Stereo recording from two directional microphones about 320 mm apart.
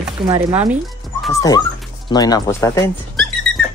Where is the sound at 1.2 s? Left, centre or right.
Centre.